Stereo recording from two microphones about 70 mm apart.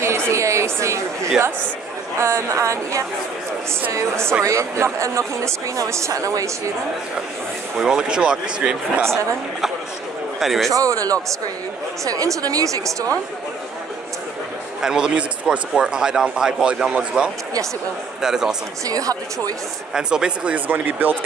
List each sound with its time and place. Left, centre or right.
0.3 s speech: right
7.7 s a man's voice: centre
9.0 s a woman's voice: right
10.4 s speech: centre
10.7 s speech: right
14.8 s a man's voice: centre
18.9 s speech: right
19.9 s a man's voice: centre